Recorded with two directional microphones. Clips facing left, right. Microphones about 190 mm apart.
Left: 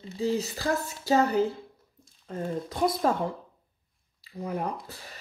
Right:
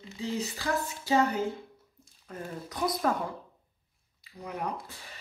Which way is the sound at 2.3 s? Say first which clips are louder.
Left 7 dB; 25° left (ahead or behind).